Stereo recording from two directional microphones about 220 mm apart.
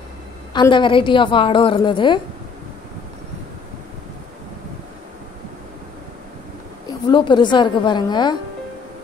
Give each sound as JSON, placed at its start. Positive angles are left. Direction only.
{"t": 0.5, "sound": "a woman's voice", "side_deg": 20}
{"t": 7.1, "sound": "a woman's voice", "side_deg": 20}